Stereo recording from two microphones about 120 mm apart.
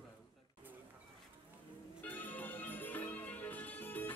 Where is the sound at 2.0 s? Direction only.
15° left (ahead or behind).